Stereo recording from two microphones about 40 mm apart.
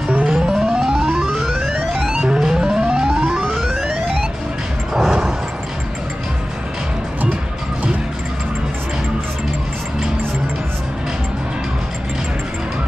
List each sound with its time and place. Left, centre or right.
0.3 s music: centre
1.4 s music: centre
2.1 s music: centre
3.5 s music: centre
4.9 s a sound: centre